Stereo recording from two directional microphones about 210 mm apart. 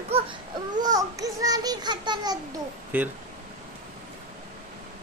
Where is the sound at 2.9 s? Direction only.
10° right (ahead or behind).